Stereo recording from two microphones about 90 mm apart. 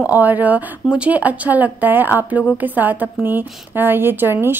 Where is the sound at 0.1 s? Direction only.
20° right (ahead or behind).